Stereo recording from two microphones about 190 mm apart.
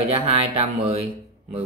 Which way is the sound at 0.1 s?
30° right (ahead or behind).